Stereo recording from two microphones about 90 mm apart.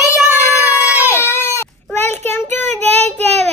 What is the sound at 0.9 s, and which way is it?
Baby cry, 15° right (ahead or behind).